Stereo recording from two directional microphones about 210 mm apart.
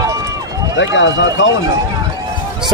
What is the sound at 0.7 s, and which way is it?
Speech, 60° left (ahead or behind).